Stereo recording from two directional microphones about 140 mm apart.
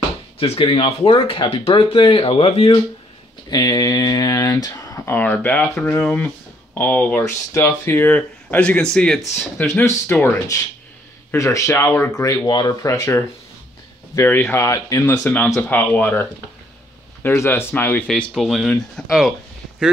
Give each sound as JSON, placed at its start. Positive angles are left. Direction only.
{"t": 0.4, "sound": "speech", "side_deg": 40}
{"t": 3.4, "sound": "speech", "side_deg": 30}
{"t": 9.7, "sound": "speech", "side_deg": 15}
{"t": 15.1, "sound": "speech", "side_deg": 10}
{"t": 18.0, "sound": "speech", "side_deg": 0}